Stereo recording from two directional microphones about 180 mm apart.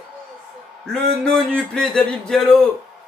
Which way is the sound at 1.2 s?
5° left (ahead or behind).